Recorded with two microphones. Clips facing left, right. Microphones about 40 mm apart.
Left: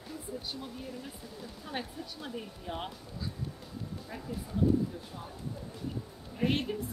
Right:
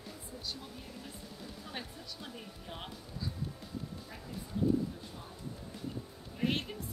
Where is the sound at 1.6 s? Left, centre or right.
Centre.